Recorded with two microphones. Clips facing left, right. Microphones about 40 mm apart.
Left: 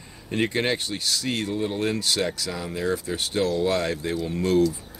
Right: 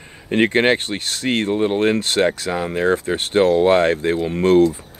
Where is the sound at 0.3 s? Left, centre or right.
Right.